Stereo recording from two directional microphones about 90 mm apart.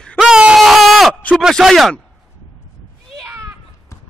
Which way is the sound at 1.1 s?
15° left (ahead or behind).